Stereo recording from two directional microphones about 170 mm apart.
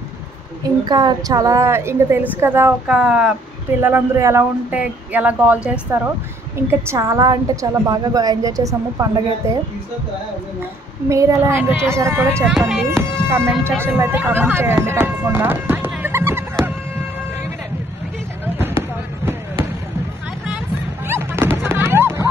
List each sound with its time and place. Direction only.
0.8 s a woman's voice: 25° right (ahead or behind)
11.1 s speech: 15° right (ahead or behind)
12.5 s speech: 5° left (ahead or behind)
13.3 s speech: 15° right (ahead or behind)
18.4 s basketball bounce: 15° right (ahead or behind)
21.1 s music: 15° right (ahead or behind)